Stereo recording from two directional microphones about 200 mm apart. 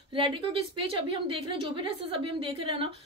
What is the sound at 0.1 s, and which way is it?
A woman's voice, 25° right (ahead or behind).